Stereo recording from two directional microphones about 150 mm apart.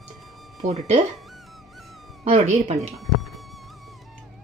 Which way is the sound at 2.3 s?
50° right (ahead or behind).